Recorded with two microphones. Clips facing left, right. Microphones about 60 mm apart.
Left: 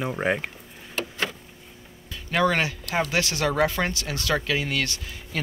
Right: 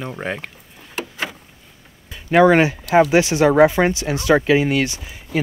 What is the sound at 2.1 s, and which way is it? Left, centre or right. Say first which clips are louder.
Speech: right 10 dB; right.